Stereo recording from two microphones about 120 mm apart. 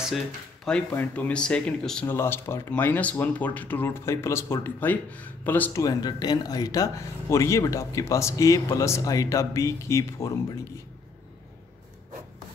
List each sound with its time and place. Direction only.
0.9 s speech: 15° left (ahead or behind)
2.0 s speech: 20° left (ahead or behind)
5.7 s speech: 30° left (ahead or behind)